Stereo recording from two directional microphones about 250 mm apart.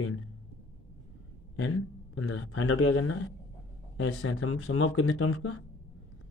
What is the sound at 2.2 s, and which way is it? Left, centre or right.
Speech, left.